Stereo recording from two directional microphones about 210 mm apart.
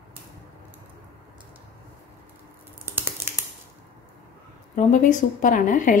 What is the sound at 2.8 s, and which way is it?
Typing, 10° right (ahead or behind).